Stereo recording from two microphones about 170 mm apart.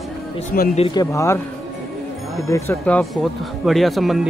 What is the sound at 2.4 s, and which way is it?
Speech, 20° left (ahead or behind).